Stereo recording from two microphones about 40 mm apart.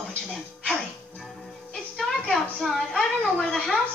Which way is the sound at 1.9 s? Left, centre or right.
Centre.